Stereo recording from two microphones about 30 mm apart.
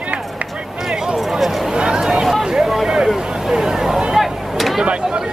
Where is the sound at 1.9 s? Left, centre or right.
Centre.